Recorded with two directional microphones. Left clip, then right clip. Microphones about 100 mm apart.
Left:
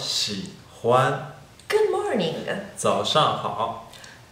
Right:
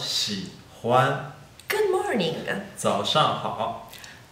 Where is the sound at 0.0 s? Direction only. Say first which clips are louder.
Left 1 dB; 10° left (ahead or behind).